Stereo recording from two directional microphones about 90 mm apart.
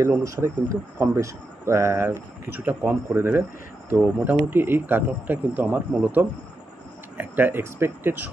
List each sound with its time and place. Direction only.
0.0 s speech: 30° right (ahead or behind)
2.5 s speech: 20° right (ahead or behind)